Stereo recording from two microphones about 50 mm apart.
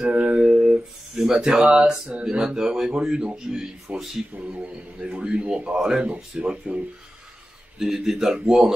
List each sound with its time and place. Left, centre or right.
0.0 s a sound: right
1.1 s a man's voice: centre
7.8 s speech: centre